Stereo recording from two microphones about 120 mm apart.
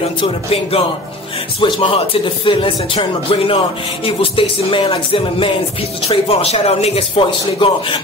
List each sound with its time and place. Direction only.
0.2 s music: 50° left (ahead or behind)